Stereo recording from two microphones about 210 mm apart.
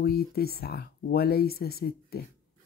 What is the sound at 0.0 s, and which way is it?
Speech, 45° left (ahead or behind).